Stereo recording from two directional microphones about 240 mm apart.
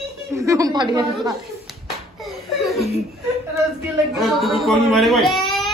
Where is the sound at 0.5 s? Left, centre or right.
Centre.